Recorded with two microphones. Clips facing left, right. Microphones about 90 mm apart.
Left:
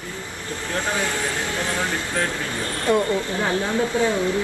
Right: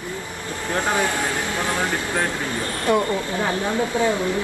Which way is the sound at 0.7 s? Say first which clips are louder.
Right 3 dB; 20° right (ahead or behind).